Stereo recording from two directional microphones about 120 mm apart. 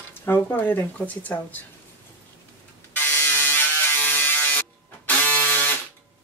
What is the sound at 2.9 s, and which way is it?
Electric shaver, 15° left (ahead or behind).